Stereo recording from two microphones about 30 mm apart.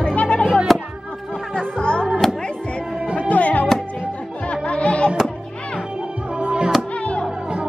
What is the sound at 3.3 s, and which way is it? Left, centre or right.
Music, left.